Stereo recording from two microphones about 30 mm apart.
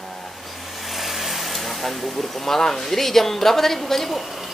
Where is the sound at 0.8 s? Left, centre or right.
Centre.